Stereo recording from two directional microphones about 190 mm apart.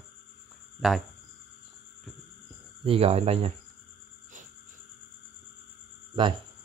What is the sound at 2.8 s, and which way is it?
Speech, 30° right (ahead or behind).